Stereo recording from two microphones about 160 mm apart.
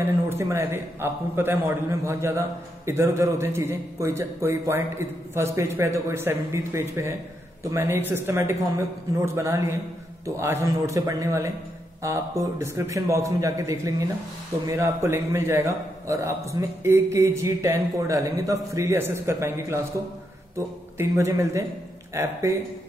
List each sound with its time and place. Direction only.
0.0 s a man's voice: 15° right (ahead or behind)